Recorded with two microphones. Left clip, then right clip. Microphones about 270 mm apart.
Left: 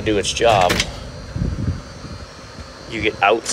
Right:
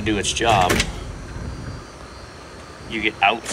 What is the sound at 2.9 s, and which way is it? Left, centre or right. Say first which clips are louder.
Speech: left 2 dB; centre.